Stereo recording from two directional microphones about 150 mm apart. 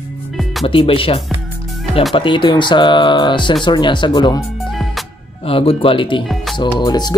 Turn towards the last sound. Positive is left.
turn(degrees=30)  # may be behind; listen again after turning